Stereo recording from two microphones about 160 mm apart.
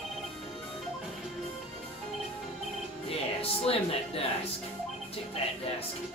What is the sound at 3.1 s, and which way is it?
Speech, 40° left (ahead or behind).